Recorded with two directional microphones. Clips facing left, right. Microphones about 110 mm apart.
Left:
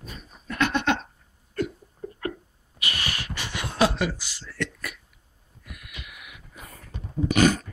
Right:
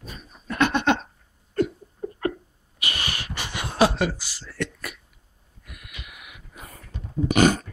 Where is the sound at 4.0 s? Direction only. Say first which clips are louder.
Right 2 dB; 30° right (ahead or behind).